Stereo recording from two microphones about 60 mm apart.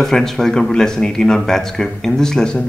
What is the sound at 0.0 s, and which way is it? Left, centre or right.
Speech, centre.